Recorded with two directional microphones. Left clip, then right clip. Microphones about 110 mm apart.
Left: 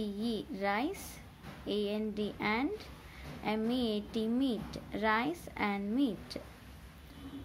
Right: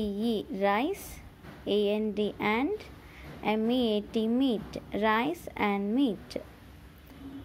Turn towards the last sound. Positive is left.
turn(degrees=-40)  # may be behind; listen again after turning